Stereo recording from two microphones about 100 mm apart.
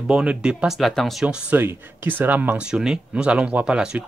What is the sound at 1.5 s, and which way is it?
Speech, 20° right (ahead or behind).